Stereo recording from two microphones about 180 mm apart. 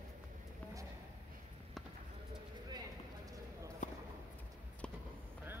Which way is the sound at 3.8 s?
45° left (ahead or behind).